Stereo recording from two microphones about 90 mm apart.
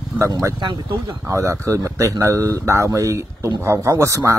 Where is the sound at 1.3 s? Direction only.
35° right (ahead or behind).